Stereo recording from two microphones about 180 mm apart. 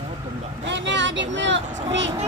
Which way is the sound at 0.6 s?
90° right.